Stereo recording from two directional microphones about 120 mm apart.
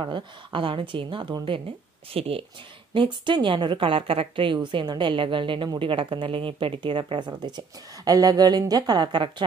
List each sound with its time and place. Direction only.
0.0 s speech: 45° right (ahead or behind)
2.1 s speech: 55° right (ahead or behind)
2.9 s speech: 45° right (ahead or behind)